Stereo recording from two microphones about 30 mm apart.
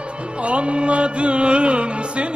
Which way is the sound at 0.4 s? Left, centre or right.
Right.